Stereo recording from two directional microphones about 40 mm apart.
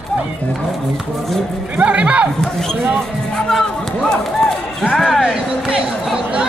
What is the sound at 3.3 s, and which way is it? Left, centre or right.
Speech, centre.